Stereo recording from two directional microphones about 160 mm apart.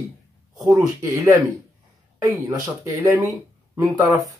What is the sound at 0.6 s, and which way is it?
A man's voice, 15° right (ahead or behind).